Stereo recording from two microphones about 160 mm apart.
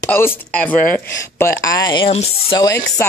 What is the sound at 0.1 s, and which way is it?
Speech, 10° left (ahead or behind).